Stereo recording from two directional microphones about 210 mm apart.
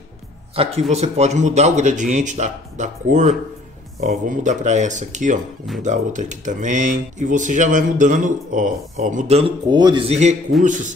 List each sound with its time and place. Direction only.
0.6 s speech: 30° right (ahead or behind)